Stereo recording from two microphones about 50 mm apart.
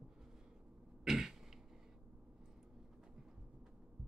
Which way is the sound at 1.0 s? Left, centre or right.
Centre.